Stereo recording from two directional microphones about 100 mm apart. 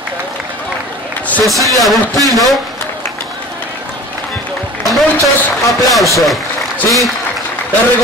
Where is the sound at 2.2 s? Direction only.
35° right (ahead or behind).